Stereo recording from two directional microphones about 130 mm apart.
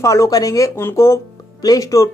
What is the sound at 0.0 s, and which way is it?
Speech, 25° left (ahead or behind).